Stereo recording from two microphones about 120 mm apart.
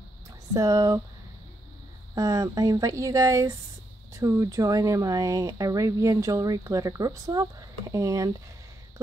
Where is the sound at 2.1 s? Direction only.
30° right (ahead or behind).